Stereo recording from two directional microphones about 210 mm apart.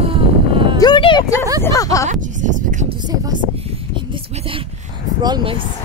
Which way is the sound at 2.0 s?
35° right (ahead or behind).